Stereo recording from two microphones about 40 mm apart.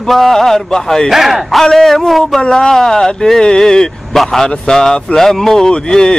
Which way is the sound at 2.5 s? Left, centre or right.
Centre.